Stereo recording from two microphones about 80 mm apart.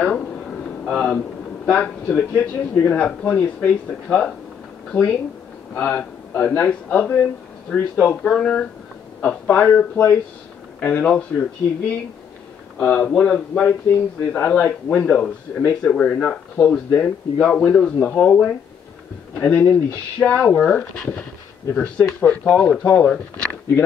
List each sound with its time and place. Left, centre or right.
0.0 s a sound: centre
1.7 s speech: centre
5.8 s speech: left
8.2 s speech: centre
12.7 s speech: centre